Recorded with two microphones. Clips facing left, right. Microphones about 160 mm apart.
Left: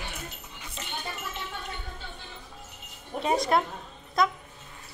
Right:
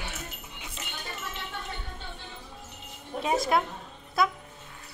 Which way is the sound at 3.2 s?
Centre (ahead or behind).